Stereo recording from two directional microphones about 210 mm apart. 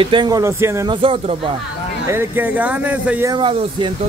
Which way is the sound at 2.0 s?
10° right (ahead or behind).